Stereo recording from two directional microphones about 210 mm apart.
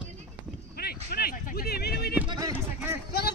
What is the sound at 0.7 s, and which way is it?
Speech, 45° left (ahead or behind).